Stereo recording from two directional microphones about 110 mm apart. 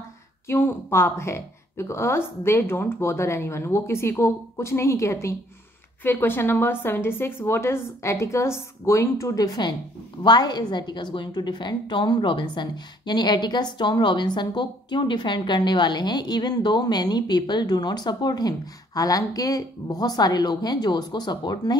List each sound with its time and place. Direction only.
0.5 s a woman's voice: 20° left (ahead or behind); by 21.7 s 40° left (ahead or behind)